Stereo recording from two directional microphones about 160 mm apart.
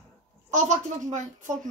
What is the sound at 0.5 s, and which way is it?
Speech, 45° right (ahead or behind).